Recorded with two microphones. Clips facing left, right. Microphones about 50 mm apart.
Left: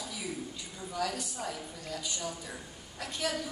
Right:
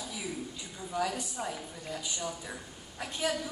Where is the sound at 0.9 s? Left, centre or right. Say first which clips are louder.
Right 2 dB; centre.